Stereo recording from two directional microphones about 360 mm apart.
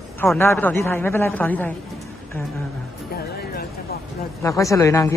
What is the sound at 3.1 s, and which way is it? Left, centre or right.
Music, left.